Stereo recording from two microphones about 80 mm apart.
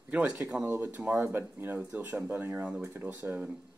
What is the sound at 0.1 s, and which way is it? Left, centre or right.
Speech, centre.